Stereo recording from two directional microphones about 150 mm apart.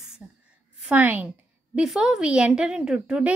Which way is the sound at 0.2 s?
15° right (ahead or behind).